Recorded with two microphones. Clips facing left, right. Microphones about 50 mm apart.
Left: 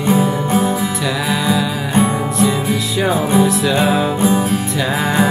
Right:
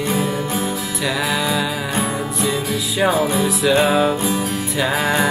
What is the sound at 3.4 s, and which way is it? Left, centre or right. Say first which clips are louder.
Music: left 1 dB; centre.